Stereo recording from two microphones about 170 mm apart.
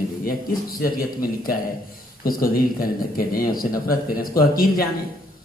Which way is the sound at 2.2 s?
55° left (ahead or behind).